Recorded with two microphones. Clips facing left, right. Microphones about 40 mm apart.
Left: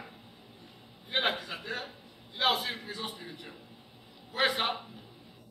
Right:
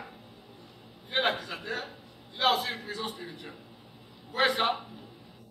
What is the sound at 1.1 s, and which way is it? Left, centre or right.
A man's voice, centre.